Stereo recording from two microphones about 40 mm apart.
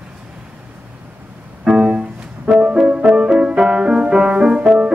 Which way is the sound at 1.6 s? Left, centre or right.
Right.